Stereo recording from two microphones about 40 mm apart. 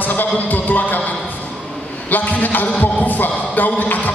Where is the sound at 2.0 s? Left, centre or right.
Left.